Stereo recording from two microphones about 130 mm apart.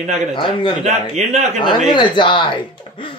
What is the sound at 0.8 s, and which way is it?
Speech, 60° right (ahead or behind).